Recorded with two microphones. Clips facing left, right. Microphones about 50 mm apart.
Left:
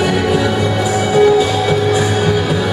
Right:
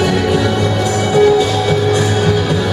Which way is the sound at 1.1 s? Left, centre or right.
Centre.